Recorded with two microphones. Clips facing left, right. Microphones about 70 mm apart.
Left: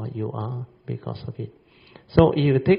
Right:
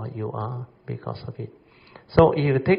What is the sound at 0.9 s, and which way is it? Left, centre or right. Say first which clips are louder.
Speech: right 2 dB; right.